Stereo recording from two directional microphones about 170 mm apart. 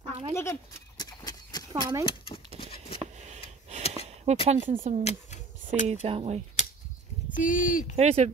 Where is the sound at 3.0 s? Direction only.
40° right (ahead or behind).